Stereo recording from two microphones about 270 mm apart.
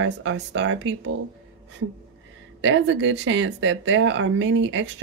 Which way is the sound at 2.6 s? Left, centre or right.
Right.